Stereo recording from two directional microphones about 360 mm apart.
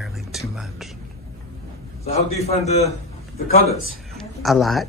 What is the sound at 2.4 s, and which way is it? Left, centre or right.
Speech, centre.